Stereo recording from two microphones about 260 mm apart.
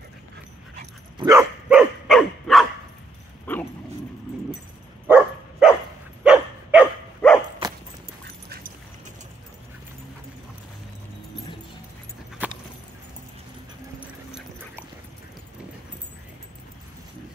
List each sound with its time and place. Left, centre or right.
1.1 s dog: centre
5.0 s dog: centre
7.6 s a sound: centre
12.4 s keys jangling: centre
13.9 s dog: centre